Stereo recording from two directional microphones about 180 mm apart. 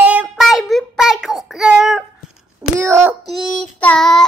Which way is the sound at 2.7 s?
15° right (ahead or behind).